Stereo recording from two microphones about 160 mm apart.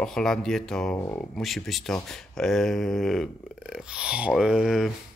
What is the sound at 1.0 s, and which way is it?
Speech, 20° left (ahead or behind).